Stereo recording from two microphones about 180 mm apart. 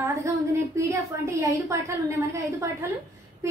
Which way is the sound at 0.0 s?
15° right (ahead or behind).